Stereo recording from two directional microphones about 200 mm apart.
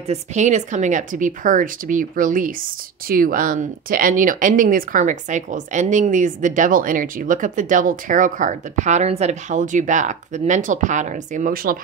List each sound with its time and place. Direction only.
0.0 s speech: 35° right (ahead or behind)